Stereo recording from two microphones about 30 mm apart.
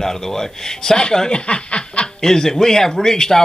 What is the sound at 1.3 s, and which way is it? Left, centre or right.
Snicker, left.